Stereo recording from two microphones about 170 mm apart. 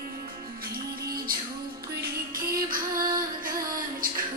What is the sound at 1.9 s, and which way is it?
Music, 55° right (ahead or behind).